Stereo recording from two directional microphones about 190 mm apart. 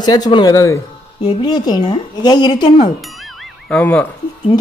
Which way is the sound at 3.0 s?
Centre (ahead or behind).